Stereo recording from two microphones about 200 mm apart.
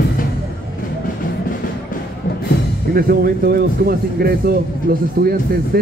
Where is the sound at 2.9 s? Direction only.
50° right (ahead or behind).